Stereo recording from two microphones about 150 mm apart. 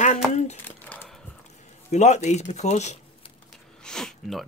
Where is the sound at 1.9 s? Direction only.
50° left (ahead or behind).